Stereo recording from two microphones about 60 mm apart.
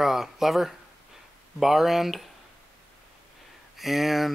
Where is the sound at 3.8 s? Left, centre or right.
Centre.